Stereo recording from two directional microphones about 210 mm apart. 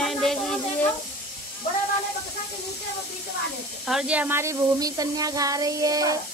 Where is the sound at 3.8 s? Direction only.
5° right (ahead or behind).